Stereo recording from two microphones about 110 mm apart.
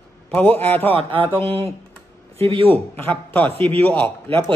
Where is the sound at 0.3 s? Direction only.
10° left (ahead or behind).